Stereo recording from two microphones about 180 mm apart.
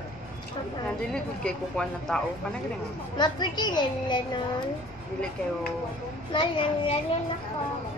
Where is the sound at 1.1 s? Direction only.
5° left (ahead or behind).